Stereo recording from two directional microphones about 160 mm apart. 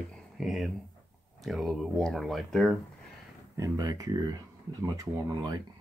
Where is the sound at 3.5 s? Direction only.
20° right (ahead or behind).